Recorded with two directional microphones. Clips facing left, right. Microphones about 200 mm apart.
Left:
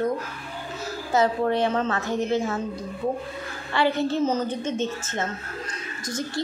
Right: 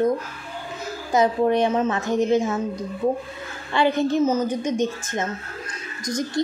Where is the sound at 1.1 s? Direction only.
15° right (ahead or behind).